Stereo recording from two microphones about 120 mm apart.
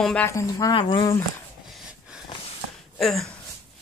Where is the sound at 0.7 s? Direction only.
45° left (ahead or behind).